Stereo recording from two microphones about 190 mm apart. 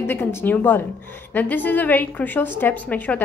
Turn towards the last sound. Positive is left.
turn(degrees=10)  # may be behind; listen again after turning